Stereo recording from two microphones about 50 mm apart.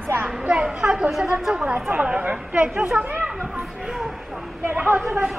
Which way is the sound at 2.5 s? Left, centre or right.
Right.